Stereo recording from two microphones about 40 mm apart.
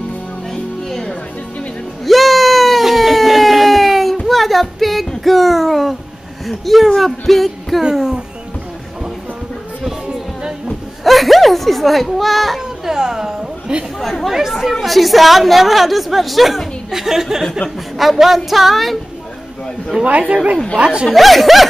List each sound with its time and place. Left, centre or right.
0.5 s music: centre
2.0 s a sound: centre
6.4 s a woman's voice: centre
11.1 s speech: centre
12.5 s a woman's voice: centre
14.5 s a woman's voice: centre
20.1 s speech: right
21.1 s a woman's voice: centre